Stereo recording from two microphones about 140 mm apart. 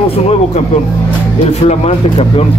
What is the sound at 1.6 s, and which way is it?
Speech, 45° left (ahead or behind).